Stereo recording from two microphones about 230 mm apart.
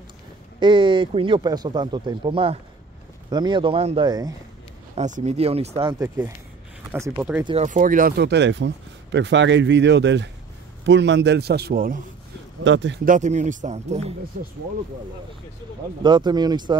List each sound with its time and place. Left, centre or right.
0.6 s speech: right
4.9 s speech: right
6.0 s speech: centre
7.4 s speech: right
12.6 s speech: right
13.0 s a man's voice: right
16.0 s speech: centre